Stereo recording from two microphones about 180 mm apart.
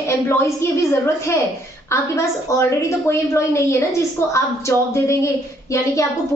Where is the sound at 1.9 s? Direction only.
15° left (ahead or behind).